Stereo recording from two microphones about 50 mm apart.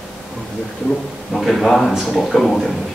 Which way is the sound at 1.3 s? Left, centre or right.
Centre.